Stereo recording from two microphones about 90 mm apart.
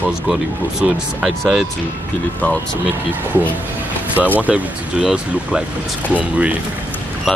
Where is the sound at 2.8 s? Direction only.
20° right (ahead or behind).